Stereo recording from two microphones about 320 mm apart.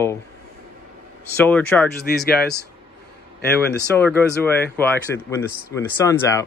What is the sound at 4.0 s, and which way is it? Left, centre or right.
Speech, centre.